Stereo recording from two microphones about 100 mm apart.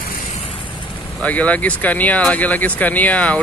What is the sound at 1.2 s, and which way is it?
Speech, 15° left (ahead or behind).